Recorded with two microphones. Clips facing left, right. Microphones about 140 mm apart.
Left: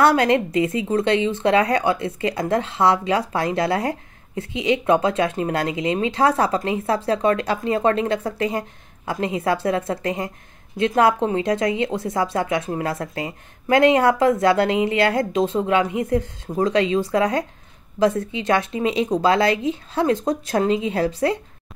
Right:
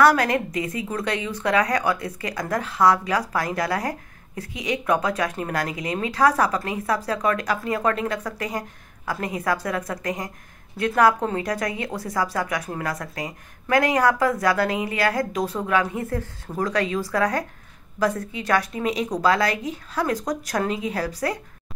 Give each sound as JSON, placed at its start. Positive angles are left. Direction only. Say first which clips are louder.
{"t": 0.0, "sound": "speech", "louder": "left 2 dB", "side_deg": 25}